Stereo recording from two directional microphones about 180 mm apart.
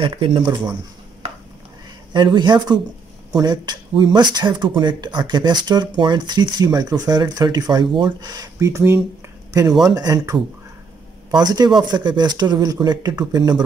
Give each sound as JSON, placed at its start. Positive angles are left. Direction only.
{"t": 0.0, "sound": "speech", "side_deg": -30}
{"t": 2.1, "sound": "speech", "side_deg": -25}